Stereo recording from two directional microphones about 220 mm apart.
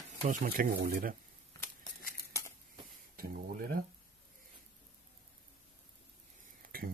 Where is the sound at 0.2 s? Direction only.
35° right (ahead or behind).